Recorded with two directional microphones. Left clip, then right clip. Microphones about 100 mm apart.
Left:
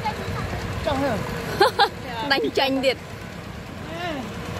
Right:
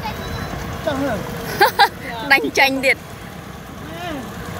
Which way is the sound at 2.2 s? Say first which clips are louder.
Right 7 dB; 15° left (ahead or behind).